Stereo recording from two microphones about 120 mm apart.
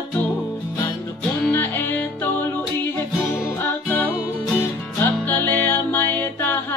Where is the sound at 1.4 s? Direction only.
15° left (ahead or behind).